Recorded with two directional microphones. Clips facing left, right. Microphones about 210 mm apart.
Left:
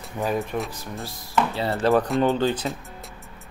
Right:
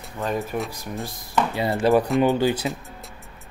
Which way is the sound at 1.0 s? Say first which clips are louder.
Left 1 dB; 15° right (ahead or behind).